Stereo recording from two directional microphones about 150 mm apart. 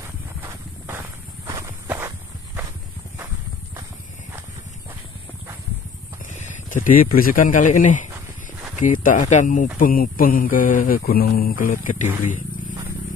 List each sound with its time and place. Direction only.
0.4 s walk: 15° right (ahead or behind)
6.3 s speech: 55° left (ahead or behind)
9.8 s speech: 70° left (ahead or behind)
12.3 s a sound: 60° left (ahead or behind)